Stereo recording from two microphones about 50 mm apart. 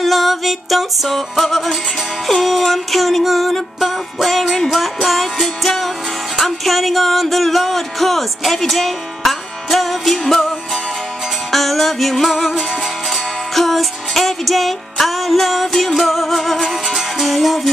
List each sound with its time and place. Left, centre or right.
0.0 s music: centre